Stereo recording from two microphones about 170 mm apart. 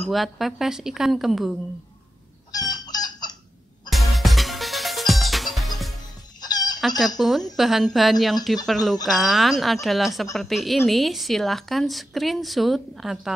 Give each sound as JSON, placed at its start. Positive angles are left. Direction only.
{"t": 0.1, "sound": "a woman's voice", "side_deg": 0}
{"t": 2.5, "sound": "chicken", "side_deg": 25}
{"t": 3.9, "sound": "music", "side_deg": 0}
{"t": 6.4, "sound": "chicken", "side_deg": 25}
{"t": 7.2, "sound": "a woman's voice", "side_deg": 0}